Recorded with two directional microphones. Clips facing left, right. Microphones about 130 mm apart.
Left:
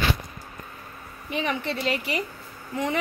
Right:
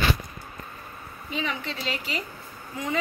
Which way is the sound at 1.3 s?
60° left (ahead or behind).